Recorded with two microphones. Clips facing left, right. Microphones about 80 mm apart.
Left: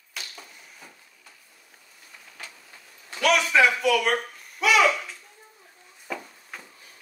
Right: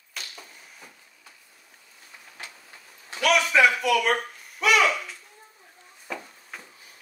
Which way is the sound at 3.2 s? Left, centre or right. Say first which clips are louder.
Even; centre.